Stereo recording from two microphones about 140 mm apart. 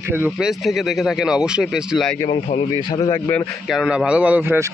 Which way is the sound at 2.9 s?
25° left (ahead or behind).